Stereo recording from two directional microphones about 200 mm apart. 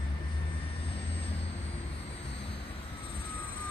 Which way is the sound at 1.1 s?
30° left (ahead or behind).